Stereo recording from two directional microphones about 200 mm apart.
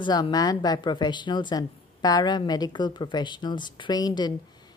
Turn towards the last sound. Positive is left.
turn(degrees=20)  # may be behind; listen again after turning